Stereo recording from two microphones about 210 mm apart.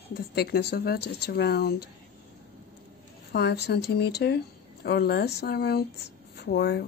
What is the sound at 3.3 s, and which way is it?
Speech, 50° left (ahead or behind).